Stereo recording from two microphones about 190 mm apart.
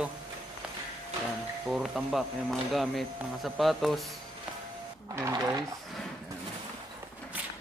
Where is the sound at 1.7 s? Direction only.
Centre (ahead or behind).